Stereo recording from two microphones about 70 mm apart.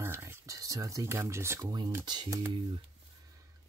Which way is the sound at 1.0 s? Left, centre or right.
Right.